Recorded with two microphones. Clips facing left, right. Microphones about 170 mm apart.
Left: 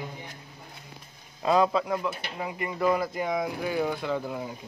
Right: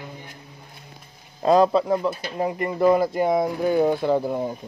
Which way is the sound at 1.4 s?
40° right (ahead or behind).